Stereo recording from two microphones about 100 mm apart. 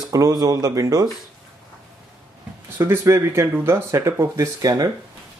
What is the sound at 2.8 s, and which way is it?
Speech, 25° right (ahead or behind).